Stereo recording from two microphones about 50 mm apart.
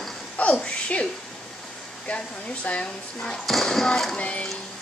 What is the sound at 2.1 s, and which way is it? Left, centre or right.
Speech, left.